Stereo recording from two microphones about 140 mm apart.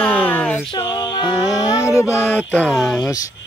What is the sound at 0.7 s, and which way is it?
Music, 30° left (ahead or behind).